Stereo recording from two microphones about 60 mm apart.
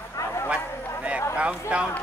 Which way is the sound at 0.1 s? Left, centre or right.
Left.